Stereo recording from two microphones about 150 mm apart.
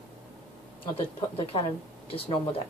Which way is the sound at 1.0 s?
40° left (ahead or behind).